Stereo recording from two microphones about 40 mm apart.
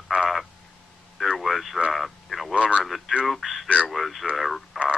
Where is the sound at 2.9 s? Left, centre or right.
Centre.